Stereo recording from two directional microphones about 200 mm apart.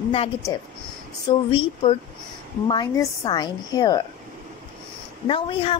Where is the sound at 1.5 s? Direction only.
30° left (ahead or behind).